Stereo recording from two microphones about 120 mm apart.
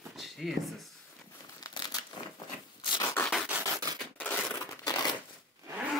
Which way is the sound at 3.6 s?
35° right (ahead or behind).